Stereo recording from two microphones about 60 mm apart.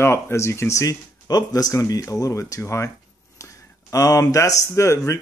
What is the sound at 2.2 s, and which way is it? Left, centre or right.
Speech, left.